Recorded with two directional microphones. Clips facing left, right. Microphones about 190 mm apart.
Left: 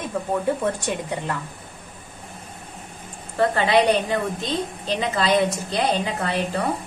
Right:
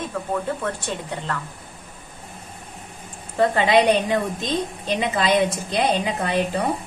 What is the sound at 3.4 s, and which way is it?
A woman's voice, 15° right (ahead or behind).